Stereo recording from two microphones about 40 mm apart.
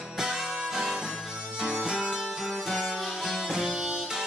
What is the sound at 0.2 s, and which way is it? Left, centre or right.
Music, centre.